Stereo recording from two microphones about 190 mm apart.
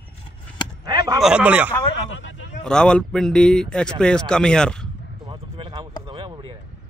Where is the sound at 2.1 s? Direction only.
75° left (ahead or behind).